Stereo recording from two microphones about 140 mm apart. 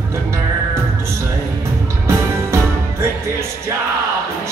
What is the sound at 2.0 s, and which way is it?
Music, 20° right (ahead or behind).